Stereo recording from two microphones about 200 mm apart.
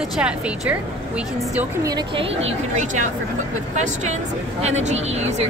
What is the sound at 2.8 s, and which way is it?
Speech, 40° right (ahead or behind).